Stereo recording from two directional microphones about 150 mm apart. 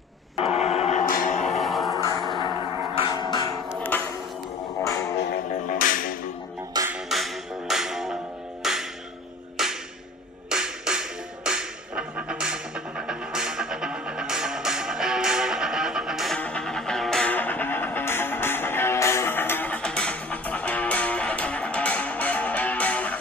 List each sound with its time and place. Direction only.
0.4 s music: 45° left (ahead or behind)
1.0 s music: 60° left (ahead or behind)
1.6 s music: centre (ahead or behind)
2.2 s music: 30° left (ahead or behind)
3.8 s a sound: 10° left (ahead or behind)
4.8 s music: 20° left (ahead or behind)
5.5 s music: 65° left (ahead or behind)
6.9 s music: centre (ahead or behind)